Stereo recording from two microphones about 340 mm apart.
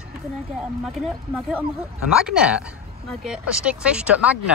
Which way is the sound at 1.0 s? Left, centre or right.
Centre.